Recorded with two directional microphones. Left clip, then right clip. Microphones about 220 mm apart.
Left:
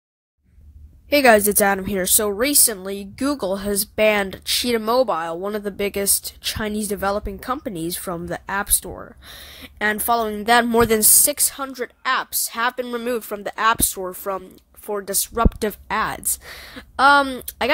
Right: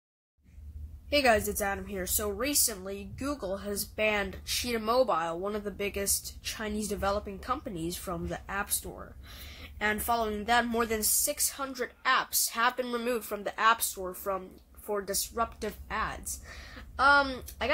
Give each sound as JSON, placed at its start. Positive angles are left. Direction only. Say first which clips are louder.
{"t": 1.1, "sound": "a woman's voice", "louder": "left 11 dB", "side_deg": 45}